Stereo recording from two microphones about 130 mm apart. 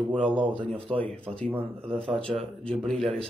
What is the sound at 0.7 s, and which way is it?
Speech, 45° right (ahead or behind).